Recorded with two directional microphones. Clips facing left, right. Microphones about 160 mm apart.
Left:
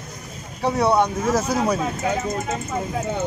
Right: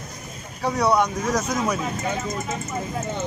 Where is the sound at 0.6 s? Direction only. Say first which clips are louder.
Left 2 dB; 25° left (ahead or behind).